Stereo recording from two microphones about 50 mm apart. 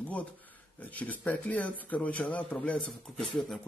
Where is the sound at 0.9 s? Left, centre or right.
Left.